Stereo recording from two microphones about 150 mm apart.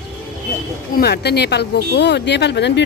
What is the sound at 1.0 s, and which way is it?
Speech, 90° left.